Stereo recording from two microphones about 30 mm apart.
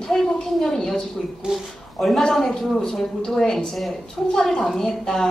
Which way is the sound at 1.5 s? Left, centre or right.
Right.